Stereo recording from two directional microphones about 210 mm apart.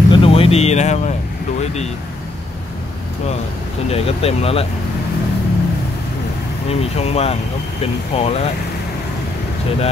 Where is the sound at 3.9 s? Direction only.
30° left (ahead or behind).